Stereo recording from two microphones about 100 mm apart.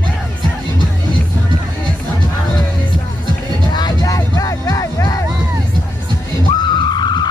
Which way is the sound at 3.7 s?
40° left (ahead or behind).